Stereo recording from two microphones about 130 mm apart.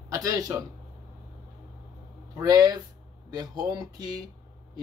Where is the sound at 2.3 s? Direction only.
30° right (ahead or behind).